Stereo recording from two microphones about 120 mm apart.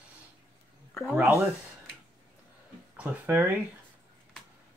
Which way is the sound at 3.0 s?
15° right (ahead or behind).